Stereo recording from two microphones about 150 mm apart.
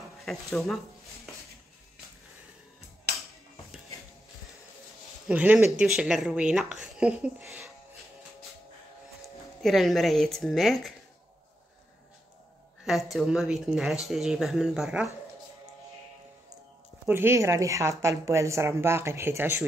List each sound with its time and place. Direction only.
0.2 s speech: centre (ahead or behind)
5.3 s a woman's voice: 10° right (ahead or behind)
9.6 s speech: centre (ahead or behind)
12.8 s speech: centre (ahead or behind)
17.0 s a woman's voice: 15° right (ahead or behind)